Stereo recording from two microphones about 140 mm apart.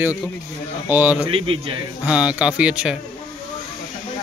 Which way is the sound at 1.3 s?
40° right (ahead or behind).